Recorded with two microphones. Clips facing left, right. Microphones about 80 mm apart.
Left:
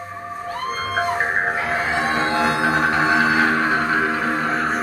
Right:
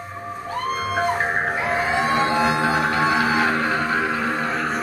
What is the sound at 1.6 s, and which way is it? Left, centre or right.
Music, centre.